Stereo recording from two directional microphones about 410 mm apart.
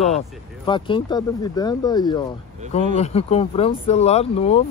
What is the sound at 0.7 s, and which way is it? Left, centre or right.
Speech, centre.